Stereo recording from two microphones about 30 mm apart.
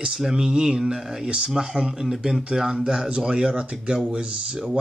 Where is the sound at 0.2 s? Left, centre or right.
Centre.